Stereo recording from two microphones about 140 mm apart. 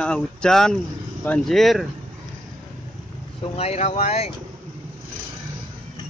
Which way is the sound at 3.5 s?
50° left (ahead or behind).